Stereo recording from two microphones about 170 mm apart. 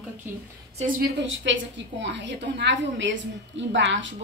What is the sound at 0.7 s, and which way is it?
A woman's voice, 55° right (ahead or behind).